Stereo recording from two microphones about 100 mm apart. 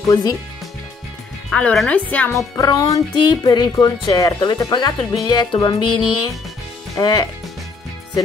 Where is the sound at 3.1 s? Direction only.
45° left (ahead or behind).